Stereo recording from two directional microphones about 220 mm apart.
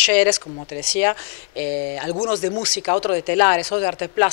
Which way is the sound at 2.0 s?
25° left (ahead or behind).